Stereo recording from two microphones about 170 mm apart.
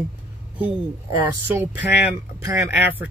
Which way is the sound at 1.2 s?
15° right (ahead or behind).